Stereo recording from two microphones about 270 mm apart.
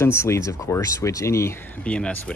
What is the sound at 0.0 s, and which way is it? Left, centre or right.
Speech, centre.